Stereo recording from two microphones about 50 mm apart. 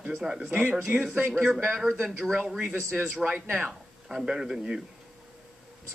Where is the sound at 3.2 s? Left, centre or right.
Right.